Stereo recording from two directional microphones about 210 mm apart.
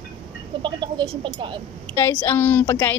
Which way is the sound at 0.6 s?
25° right (ahead or behind).